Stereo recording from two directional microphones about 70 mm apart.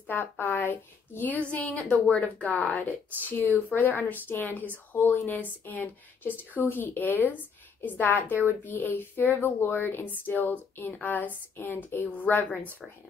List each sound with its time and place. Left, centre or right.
0.1 s a woman's voice: left